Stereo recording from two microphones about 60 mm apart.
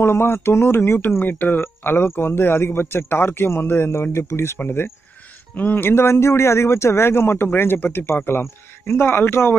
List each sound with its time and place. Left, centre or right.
0.0 s speech: left
1.2 s a man's voice: left
5.5 s speech: left